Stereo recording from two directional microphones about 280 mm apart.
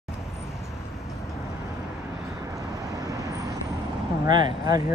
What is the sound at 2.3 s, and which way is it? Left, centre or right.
Vehicle, centre.